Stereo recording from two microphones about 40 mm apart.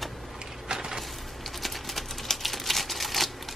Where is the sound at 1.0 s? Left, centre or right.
Centre.